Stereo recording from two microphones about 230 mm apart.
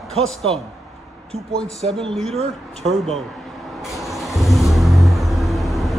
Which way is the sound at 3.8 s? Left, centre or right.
Centre.